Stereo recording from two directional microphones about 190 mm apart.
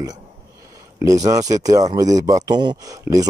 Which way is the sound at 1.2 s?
20° right (ahead or behind).